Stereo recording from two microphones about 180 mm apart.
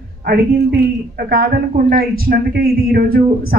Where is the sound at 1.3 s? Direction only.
60° right (ahead or behind).